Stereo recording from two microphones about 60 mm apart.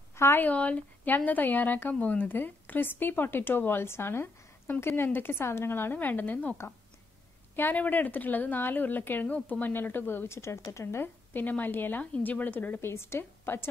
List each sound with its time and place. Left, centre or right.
0.1 s a sound: left
0.4 s speech: left
7.5 s speech: left
11.3 s speech: left
12.9 s a woman's voice: left